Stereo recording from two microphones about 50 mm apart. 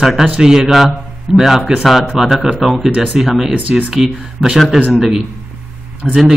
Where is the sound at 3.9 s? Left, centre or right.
Centre.